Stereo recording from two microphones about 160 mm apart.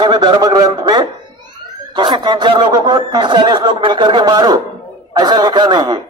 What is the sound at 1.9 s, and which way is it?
Speech, 30° right (ahead or behind).